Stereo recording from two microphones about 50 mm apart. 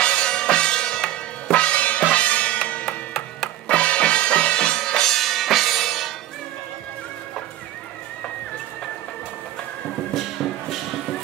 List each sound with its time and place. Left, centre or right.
0.0 s music: centre
10.1 s music: centre